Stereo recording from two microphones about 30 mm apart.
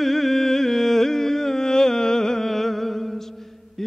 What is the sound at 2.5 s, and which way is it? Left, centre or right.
Music, centre.